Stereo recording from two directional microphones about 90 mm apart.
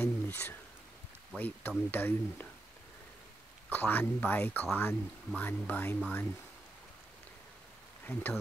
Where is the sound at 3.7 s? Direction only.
20° left (ahead or behind).